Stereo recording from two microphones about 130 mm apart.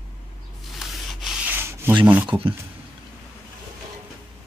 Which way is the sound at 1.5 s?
20° right (ahead or behind).